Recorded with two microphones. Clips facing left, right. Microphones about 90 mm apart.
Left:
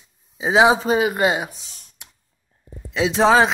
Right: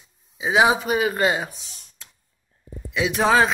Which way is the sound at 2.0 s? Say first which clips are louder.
Left 2 dB; 20° left (ahead or behind).